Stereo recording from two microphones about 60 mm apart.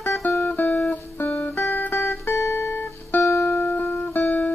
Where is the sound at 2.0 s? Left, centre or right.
Left.